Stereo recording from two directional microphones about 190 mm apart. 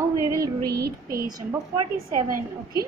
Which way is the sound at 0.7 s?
55° right (ahead or behind).